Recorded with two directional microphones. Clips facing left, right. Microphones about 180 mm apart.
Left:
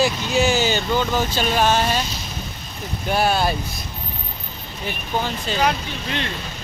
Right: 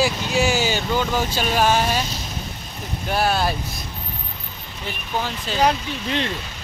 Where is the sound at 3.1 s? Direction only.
Centre (ahead or behind).